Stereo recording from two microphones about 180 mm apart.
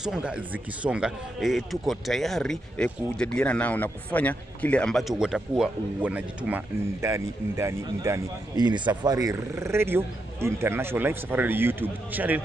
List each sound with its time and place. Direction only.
0.0 s speech: 5° right (ahead or behind)